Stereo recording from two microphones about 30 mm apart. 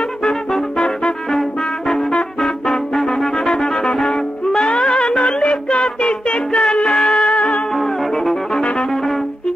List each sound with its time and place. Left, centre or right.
0.7 s brass instrument: left
2.4 s music: centre
5.2 s music: left
7.0 s music: centre
7.2 s music: left
7.7 s music: centre
8.9 s brass instrument: centre